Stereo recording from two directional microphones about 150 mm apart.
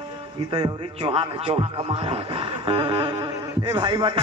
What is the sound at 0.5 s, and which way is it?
Music, 30° right (ahead or behind).